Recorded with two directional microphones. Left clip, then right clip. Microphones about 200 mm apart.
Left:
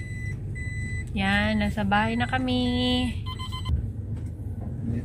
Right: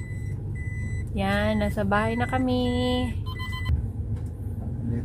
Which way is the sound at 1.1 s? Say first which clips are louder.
Even; 25° right (ahead or behind).